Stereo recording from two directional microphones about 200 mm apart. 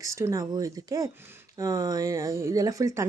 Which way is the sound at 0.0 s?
15° right (ahead or behind).